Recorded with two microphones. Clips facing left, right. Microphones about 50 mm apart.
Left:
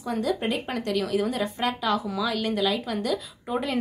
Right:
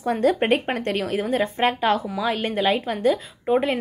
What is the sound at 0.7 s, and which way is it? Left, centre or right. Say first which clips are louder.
Speech: right 2 dB; right.